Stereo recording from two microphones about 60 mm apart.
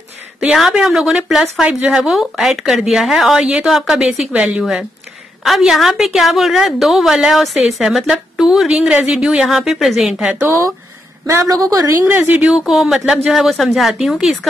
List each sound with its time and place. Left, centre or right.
0.6 s a woman's voice: centre
10.4 s speech: right
11.4 s a woman's voice: right
12.2 s speech: right
12.6 s a woman's voice: centre